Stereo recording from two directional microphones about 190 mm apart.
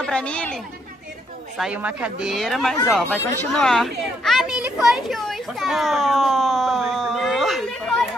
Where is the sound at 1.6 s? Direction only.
5° right (ahead or behind).